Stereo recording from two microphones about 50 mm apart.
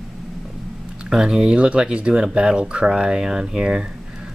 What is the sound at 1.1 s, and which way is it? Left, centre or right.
Speech, centre.